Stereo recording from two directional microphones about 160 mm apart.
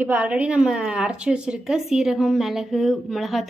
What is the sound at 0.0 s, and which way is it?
Speech, 10° right (ahead or behind).